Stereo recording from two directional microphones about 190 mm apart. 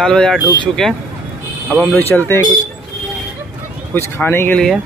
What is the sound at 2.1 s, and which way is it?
Speech, 15° left (ahead or behind).